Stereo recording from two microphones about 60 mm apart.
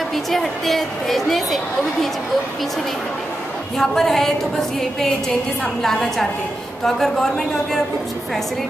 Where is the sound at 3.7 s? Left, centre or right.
Centre.